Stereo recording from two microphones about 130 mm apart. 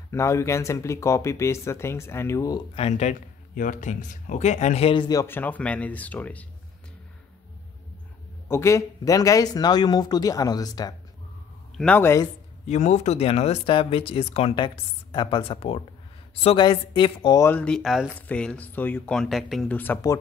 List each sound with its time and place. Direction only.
0.1 s speech: 20° left (ahead or behind)
2.7 s speech: 55° left (ahead or behind)
4.9 s a woman's voice: 35° left (ahead or behind)
5.2 s speech: 15° left (ahead or behind)
8.5 s speech: 20° left (ahead or behind)
11.7 s speech: 5° left (ahead or behind)
12.0 s speech: 20° left (ahead or behind)
12.6 s speech: 60° left (ahead or behind)
14.5 s a woman's voice: 35° left (ahead or behind)
17.5 s speech: 10° left (ahead or behind)
18.1 s speech: 10° left (ahead or behind)
19.7 s speech: 15° left (ahead or behind)